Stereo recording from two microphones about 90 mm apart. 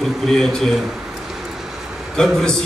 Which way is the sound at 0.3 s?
5° left (ahead or behind).